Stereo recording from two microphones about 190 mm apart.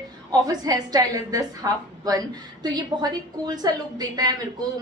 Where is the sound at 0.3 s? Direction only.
20° right (ahead or behind).